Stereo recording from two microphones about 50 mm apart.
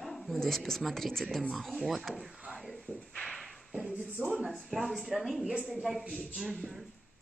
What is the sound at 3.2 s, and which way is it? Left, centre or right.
Whip, centre.